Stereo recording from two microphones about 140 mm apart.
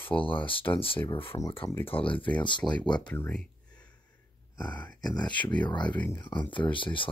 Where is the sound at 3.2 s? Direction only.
10° left (ahead or behind).